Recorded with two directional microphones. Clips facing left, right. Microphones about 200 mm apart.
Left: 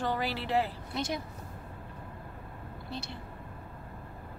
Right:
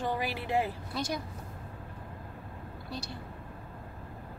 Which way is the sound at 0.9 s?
20° left (ahead or behind).